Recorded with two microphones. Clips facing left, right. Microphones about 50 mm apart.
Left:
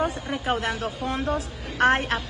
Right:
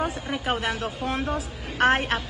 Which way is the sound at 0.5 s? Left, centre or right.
Centre.